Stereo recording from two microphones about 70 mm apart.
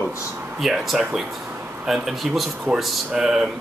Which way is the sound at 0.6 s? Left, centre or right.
Centre.